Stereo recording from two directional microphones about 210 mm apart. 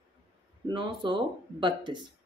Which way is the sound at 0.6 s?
20° right (ahead or behind).